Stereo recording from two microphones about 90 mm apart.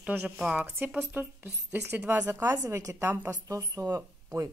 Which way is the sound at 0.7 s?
20° right (ahead or behind).